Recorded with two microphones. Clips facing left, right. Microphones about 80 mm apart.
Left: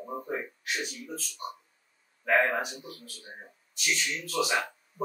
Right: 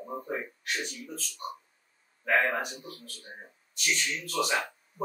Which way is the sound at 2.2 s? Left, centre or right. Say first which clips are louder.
Left 1 dB; centre.